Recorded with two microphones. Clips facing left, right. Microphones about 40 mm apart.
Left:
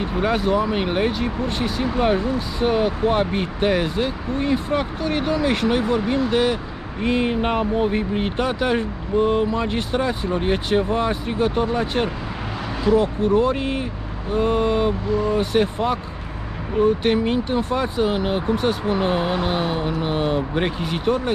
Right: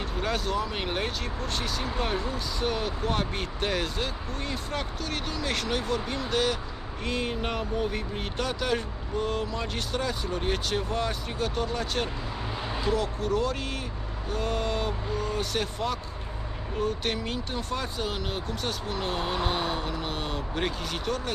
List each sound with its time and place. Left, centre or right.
0.2 s speech: centre